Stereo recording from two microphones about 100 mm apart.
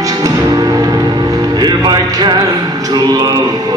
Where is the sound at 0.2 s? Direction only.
40° right (ahead or behind).